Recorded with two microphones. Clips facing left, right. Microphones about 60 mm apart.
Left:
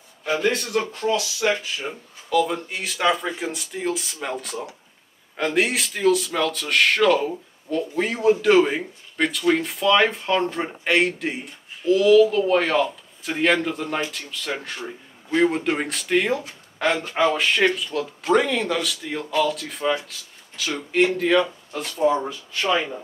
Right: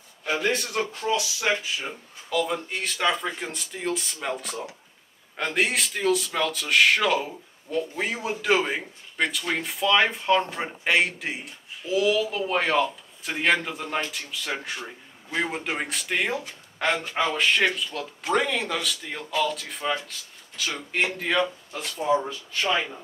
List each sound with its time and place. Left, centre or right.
0.2 s speech: centre